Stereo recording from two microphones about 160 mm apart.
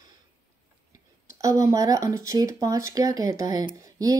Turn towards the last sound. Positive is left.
turn(degrees=-20)  # may be behind; listen again after turning